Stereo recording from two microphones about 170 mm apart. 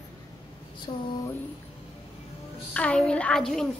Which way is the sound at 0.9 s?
30° left (ahead or behind).